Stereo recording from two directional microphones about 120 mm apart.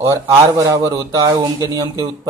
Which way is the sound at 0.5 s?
30° right (ahead or behind).